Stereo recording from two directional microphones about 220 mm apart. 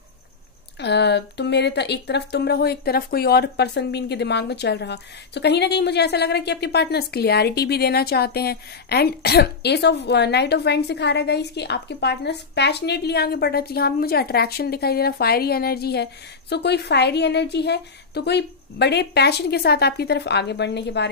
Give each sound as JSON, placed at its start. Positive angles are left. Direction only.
{"t": 0.7, "sound": "speech", "side_deg": 50}